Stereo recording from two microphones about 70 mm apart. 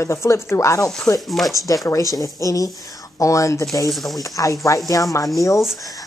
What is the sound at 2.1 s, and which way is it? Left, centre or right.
A woman's voice, left.